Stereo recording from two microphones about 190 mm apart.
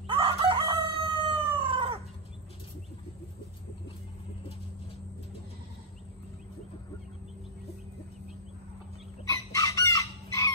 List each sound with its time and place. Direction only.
0.0 s chicken: 30° right (ahead or behind)
9.3 s chicken: 15° left (ahead or behind)